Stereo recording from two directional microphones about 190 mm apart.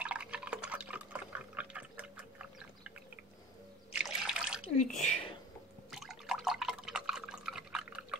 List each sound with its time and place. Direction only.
0.0 s liquid: 5° right (ahead or behind)
3.9 s water: 5° right (ahead or behind)
4.7 s a sound: 40° left (ahead or behind)
5.9 s drip: centre (ahead or behind)